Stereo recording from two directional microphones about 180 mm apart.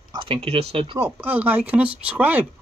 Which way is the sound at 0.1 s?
30° right (ahead or behind).